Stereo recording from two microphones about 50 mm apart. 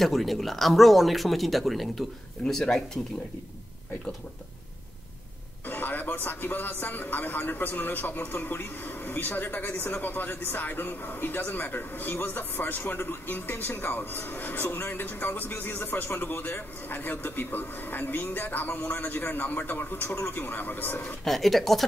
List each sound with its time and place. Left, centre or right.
0.0 s speech: centre
2.4 s speech: centre
5.7 s speech: left
21.2 s speech: centre